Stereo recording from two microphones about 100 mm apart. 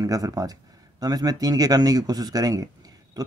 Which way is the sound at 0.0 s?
35° right (ahead or behind).